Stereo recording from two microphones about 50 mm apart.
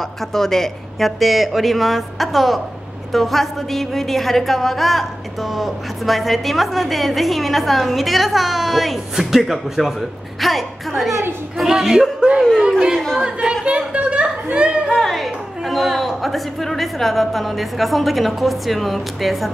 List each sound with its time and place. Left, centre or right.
0.3 s a woman's voice: centre
10.4 s a sound: centre
11.5 s a woman's voice: centre
12.9 s speech: centre
13.2 s a sound: centre
15.0 s a woman's voice: centre